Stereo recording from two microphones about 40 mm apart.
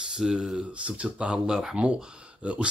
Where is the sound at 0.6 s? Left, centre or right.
Right.